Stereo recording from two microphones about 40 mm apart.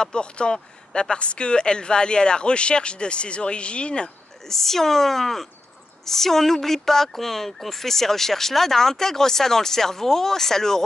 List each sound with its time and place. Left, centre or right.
0.0 s speech: left
4.5 s speech: centre